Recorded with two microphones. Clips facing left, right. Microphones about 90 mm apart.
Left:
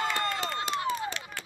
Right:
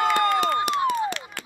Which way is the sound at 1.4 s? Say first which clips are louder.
Right 3 dB; 65° right (ahead or behind).